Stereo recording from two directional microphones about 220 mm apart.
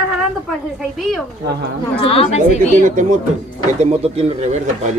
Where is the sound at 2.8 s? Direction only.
35° right (ahead or behind).